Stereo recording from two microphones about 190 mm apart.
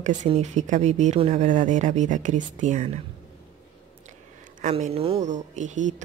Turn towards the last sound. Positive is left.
turn(degrees=-40)  # may be behind; listen again after turning